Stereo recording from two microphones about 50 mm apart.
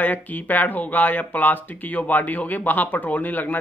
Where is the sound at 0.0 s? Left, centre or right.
Left.